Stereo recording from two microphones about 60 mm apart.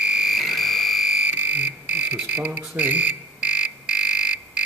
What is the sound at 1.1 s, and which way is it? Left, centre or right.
Frog, centre.